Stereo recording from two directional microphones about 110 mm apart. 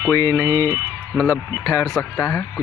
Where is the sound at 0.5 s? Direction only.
25° right (ahead or behind).